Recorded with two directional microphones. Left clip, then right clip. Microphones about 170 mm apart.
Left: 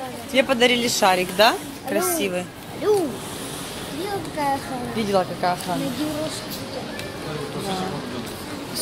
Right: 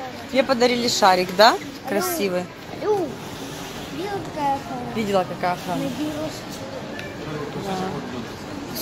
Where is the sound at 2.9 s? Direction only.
90° left.